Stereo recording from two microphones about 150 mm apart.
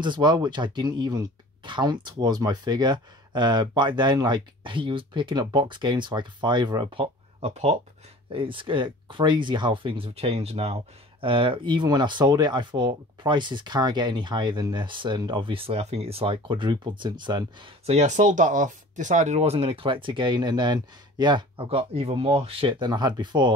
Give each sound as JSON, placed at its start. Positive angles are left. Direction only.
{"t": 0.0, "sound": "speech", "side_deg": -30}
{"t": 8.3, "sound": "speech", "side_deg": -35}